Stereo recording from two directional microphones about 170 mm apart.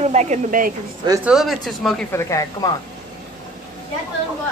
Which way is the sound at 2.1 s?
20° left (ahead or behind).